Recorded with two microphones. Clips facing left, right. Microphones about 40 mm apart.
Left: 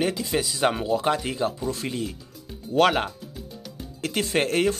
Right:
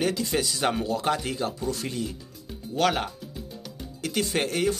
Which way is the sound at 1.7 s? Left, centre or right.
Left.